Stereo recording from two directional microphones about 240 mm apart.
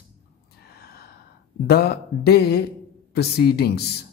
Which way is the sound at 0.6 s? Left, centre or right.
Left.